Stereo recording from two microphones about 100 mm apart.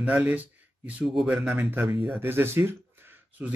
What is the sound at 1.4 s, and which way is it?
A man's voice, 15° right (ahead or behind).